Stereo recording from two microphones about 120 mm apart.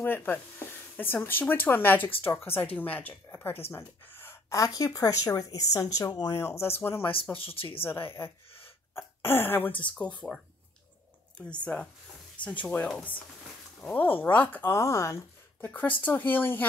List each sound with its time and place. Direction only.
0.0 s speech: 15° left (ahead or behind)
7.3 s speech: 50° left (ahead or behind)
7.8 s speech: 20° left (ahead or behind)
11.3 s speech: 10° left (ahead or behind)